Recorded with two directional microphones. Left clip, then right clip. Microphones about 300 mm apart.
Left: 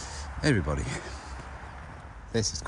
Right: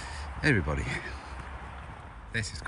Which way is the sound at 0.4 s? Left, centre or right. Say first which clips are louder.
Even; centre.